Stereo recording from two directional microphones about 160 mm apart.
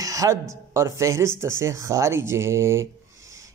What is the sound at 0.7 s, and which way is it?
Speech, 20° right (ahead or behind).